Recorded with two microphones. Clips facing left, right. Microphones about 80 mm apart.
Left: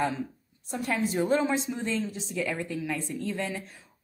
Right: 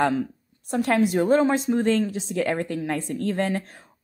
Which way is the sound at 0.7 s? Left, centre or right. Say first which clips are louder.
Right 8 dB; right.